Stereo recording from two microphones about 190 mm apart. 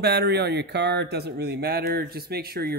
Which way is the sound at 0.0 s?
60° right (ahead or behind).